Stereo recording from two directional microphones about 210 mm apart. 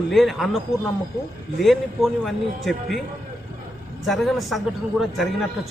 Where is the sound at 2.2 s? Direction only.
Centre (ahead or behind).